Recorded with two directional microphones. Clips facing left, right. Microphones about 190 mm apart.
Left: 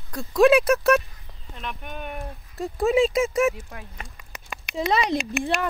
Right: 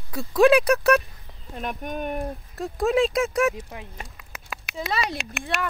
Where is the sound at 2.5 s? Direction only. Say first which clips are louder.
Left 1 dB; centre (ahead or behind).